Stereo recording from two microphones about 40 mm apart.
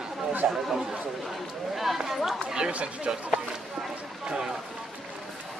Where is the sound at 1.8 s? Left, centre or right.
Centre.